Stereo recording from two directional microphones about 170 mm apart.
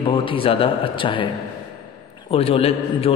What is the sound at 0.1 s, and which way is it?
A man's voice, 30° left (ahead or behind).